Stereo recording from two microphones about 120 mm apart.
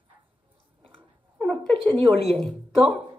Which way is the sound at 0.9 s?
5° left (ahead or behind).